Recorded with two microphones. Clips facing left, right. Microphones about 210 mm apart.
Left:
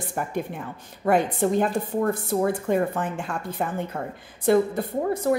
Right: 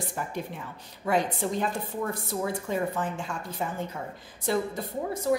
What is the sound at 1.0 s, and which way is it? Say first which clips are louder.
A woman's voice: left 6 dB; 55° left (ahead or behind).